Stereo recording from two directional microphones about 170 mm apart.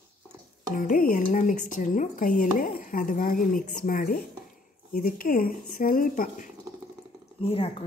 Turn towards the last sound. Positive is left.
turn(degrees=35)  # may be behind; listen again after turning